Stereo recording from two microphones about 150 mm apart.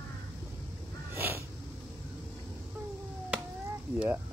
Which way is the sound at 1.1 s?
15° right (ahead or behind).